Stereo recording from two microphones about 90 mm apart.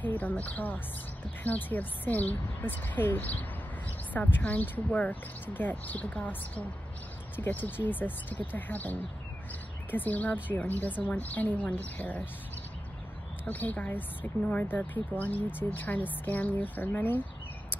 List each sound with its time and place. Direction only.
0.0 s a woman's voice: 20° left (ahead or behind)
13.5 s a woman's voice: 20° left (ahead or behind)